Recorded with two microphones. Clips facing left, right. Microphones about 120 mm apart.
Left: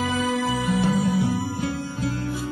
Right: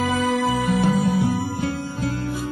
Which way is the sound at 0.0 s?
55° right (ahead or behind).